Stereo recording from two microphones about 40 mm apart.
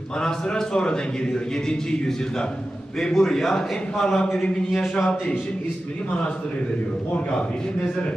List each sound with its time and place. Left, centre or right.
0.2 s a man's voice: centre